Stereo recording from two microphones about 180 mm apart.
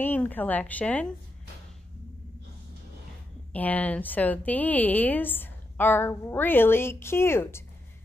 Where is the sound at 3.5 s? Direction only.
10° left (ahead or behind).